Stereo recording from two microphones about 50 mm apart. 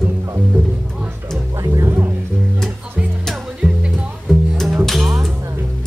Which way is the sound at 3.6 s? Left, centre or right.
Right.